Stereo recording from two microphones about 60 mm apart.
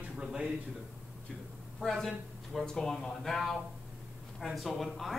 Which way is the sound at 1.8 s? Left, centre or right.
Centre.